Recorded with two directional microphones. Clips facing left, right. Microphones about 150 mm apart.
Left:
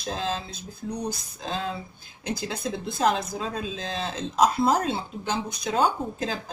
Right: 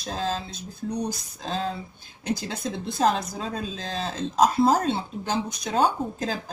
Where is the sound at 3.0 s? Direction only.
35° right (ahead or behind).